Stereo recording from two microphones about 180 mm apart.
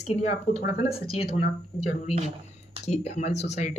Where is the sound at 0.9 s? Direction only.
35° left (ahead or behind).